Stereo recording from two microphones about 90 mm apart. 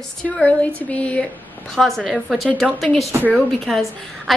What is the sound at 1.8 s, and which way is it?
A woman's voice, 5° left (ahead or behind).